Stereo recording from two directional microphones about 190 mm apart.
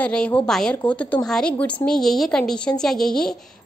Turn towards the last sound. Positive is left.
turn(degrees=5)  # may be behind; listen again after turning